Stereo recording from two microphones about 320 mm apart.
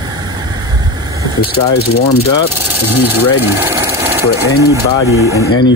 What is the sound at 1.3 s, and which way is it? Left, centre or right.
Speech, left.